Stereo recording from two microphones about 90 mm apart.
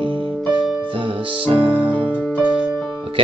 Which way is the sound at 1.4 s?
75° right (ahead or behind).